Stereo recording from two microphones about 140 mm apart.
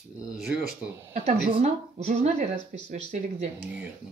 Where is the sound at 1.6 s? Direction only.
55° right (ahead or behind).